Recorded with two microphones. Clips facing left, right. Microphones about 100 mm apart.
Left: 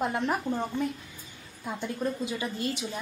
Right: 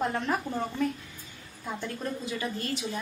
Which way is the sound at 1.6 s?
15° left (ahead or behind).